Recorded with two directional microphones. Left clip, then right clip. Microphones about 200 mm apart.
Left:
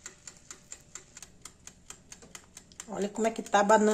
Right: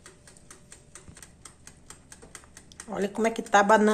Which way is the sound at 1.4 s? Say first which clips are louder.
Even; 55° left (ahead or behind).